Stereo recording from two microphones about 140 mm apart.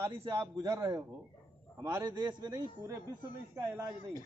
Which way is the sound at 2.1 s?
30° right (ahead or behind).